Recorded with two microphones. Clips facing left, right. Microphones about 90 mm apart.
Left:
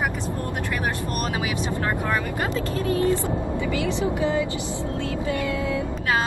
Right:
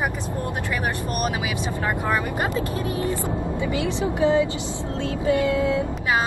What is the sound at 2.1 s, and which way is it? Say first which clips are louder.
Speech: right 2 dB; 20° right (ahead or behind).